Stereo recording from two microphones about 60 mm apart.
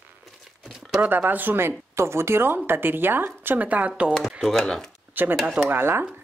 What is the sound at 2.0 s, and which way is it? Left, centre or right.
A woman's voice, right.